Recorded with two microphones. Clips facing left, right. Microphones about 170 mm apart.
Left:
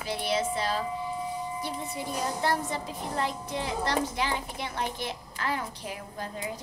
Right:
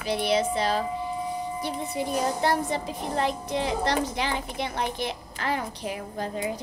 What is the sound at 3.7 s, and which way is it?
Speech, 75° right (ahead or behind).